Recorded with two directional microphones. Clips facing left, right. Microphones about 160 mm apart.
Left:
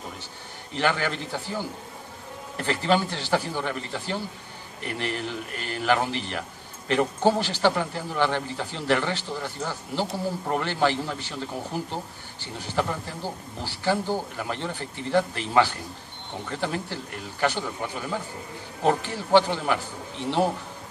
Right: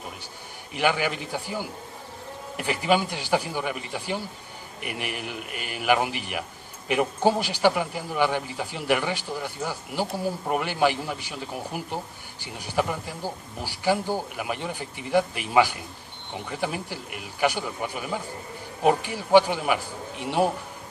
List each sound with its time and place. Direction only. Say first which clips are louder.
0.7 s a man's voice: right 1 dB; 10° right (ahead or behind)